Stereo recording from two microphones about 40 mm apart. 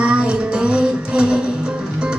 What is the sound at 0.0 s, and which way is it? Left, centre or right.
Music, right.